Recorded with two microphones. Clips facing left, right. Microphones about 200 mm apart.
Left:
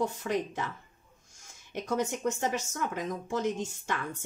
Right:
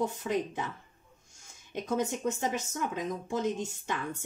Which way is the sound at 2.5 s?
20° right (ahead or behind).